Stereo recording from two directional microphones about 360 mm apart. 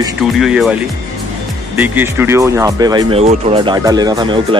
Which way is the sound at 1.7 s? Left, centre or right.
Centre.